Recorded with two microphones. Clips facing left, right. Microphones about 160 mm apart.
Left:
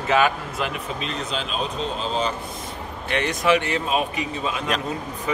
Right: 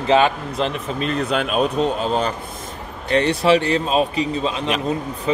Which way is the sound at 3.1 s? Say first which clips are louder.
Right 5 dB; 35° right (ahead or behind).